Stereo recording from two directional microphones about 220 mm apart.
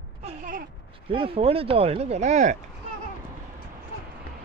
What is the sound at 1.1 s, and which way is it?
Speech, 25° right (ahead or behind).